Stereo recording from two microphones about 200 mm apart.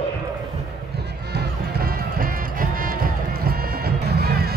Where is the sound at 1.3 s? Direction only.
50° right (ahead or behind).